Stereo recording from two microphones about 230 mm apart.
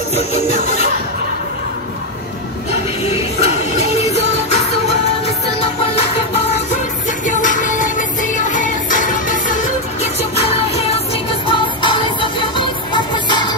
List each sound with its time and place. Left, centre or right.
0.1 s music: left
3.0 s music: left
5.2 s music: left